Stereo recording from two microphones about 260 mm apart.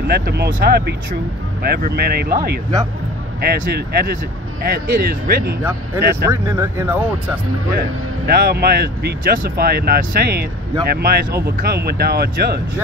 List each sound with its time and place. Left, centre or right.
0.1 s speech: right
5.6 s speech: centre
8.3 s speech: right